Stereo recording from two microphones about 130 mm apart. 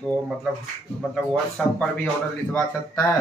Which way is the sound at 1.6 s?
5° left (ahead or behind).